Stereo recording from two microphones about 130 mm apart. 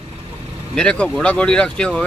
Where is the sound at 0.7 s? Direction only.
10° left (ahead or behind).